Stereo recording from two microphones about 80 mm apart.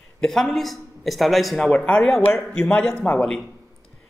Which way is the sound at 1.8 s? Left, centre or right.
Centre.